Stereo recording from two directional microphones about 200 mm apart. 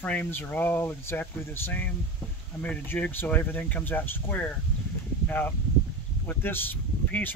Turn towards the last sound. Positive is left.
turn(degrees=10)  # may be behind; listen again after turning